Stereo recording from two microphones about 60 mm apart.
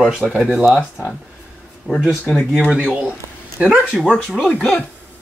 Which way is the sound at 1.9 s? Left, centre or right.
Centre.